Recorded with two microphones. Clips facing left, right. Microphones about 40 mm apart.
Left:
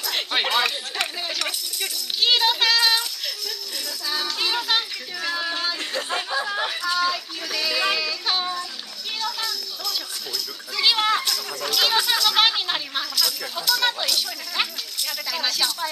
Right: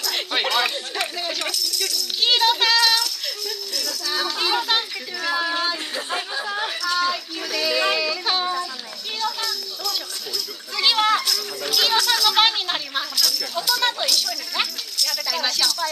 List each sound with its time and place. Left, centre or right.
0.0 s speech: centre
3.7 s speech: centre
4.1 s speech: centre
9.2 s children playing: centre
10.8 s speech: centre
13.2 s speech: centre
13.6 s speech: centre
15.0 s speech: centre